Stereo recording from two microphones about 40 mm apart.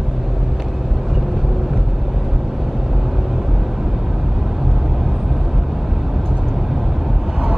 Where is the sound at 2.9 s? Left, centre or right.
Centre.